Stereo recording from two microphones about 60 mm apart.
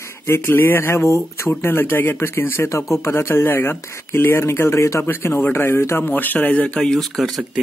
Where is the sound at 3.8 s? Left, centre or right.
Left.